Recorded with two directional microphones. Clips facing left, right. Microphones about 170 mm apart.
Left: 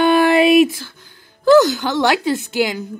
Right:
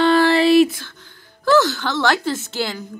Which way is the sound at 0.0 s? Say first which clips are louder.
Left 2 dB; 15° left (ahead or behind).